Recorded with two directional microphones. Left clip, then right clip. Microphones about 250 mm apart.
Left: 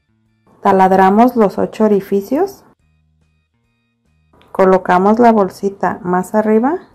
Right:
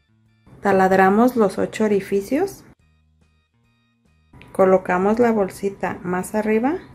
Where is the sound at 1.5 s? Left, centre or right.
Centre.